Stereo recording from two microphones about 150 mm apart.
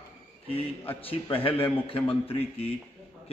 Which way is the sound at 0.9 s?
40° left (ahead or behind).